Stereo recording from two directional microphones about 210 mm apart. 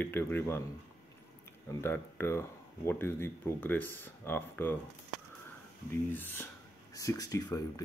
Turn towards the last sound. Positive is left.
turn(degrees=15)  # may be behind; listen again after turning